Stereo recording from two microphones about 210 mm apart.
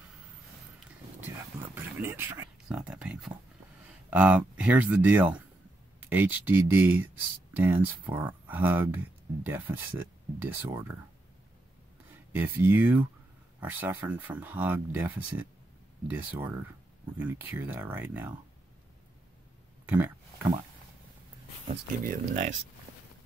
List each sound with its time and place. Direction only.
1.6 s speech: 10° right (ahead or behind)
12.1 s speech: 10° right (ahead or behind)
19.9 s a sound: 10° right (ahead or behind)
21.6 s speech: 40° right (ahead or behind)